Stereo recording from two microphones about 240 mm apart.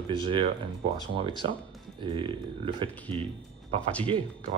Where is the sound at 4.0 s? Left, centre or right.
Right.